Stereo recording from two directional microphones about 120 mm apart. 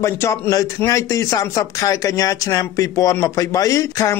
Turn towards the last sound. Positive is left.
turn(degrees=25)  # may be behind; listen again after turning